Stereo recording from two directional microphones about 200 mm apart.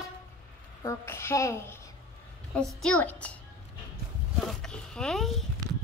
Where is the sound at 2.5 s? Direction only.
Centre (ahead or behind).